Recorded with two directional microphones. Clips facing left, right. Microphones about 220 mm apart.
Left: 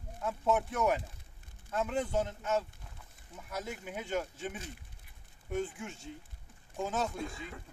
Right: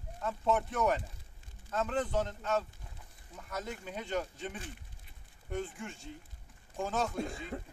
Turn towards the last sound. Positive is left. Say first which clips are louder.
# right 2 dB
turn(degrees=-35)  # may be behind; listen again after turning